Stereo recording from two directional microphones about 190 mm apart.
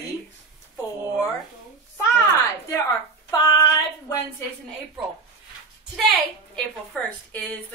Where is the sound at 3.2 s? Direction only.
20° left (ahead or behind).